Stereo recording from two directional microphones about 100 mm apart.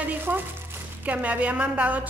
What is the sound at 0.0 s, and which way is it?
Crumpling, 15° right (ahead or behind).